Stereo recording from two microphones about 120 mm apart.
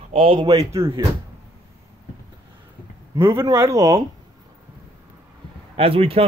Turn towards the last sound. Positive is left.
turn(degrees=-55)  # may be behind; listen again after turning